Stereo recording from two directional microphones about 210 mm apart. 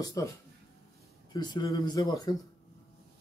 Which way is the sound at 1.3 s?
20° left (ahead or behind).